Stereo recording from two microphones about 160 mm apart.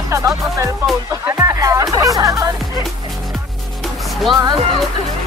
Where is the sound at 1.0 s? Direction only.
15° right (ahead or behind).